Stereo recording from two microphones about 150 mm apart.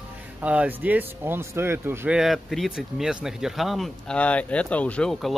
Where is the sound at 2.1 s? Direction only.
Centre (ahead or behind).